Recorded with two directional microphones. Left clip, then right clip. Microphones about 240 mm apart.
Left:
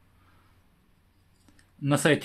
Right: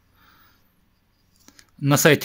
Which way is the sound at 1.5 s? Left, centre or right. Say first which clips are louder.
Right 6 dB; right.